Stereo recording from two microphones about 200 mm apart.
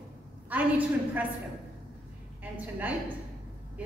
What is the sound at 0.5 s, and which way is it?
Speech, 10° right (ahead or behind).